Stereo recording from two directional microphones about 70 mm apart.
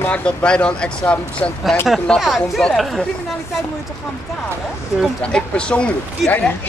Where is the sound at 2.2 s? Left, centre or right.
Centre.